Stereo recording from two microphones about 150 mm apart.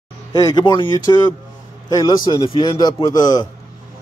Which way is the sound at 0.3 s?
25° left (ahead or behind).